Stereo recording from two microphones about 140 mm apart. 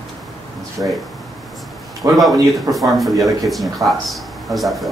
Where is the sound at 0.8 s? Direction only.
20° right (ahead or behind).